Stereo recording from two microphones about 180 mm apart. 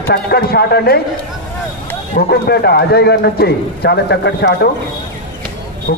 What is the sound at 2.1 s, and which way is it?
A man's voice, 60° left (ahead or behind).